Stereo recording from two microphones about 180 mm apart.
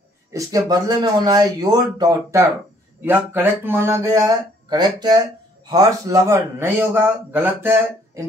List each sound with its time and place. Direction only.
0.3 s a man's voice: 20° right (ahead or behind)